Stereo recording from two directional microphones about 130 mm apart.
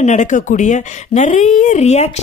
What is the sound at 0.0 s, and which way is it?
Speech, 70° left (ahead or behind).